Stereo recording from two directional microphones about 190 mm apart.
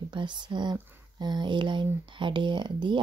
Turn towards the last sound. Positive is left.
turn(degrees=-25)  # may be behind; listen again after turning